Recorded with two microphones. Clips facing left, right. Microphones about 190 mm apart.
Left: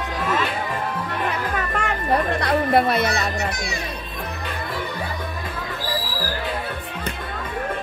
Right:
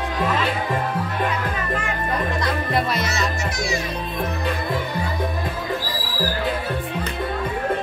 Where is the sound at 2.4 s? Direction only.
55° left (ahead or behind).